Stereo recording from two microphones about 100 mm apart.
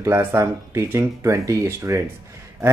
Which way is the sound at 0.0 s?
25° right (ahead or behind).